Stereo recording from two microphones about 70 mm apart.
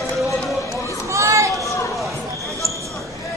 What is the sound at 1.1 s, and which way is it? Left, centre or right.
Speech, right.